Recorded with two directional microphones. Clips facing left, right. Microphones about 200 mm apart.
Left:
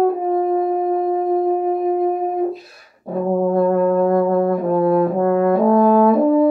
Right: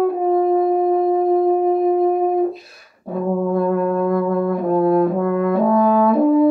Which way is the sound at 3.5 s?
40° left (ahead or behind).